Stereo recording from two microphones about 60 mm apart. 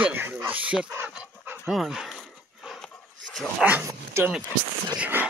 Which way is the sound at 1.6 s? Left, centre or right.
Centre.